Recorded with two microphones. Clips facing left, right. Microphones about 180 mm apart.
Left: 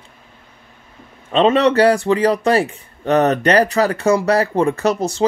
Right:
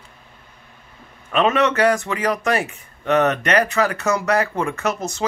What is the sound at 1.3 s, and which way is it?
Speech, 30° left (ahead or behind).